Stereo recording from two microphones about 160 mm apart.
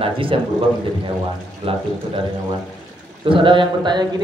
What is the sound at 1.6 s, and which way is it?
Speech, 35° right (ahead or behind).